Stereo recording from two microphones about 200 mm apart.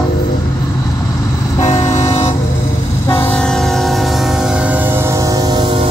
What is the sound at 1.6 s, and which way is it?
Vehicle, 35° left (ahead or behind).